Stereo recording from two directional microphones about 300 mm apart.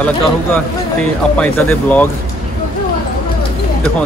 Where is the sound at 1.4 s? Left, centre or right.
Centre.